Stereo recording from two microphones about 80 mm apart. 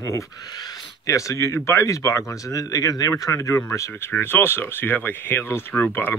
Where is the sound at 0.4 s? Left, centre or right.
Left.